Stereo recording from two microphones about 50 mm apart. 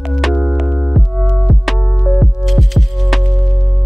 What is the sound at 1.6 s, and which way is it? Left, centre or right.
Music, centre.